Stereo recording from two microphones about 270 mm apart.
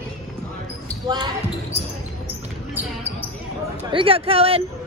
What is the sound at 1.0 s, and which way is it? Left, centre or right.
Basketball bounce, centre.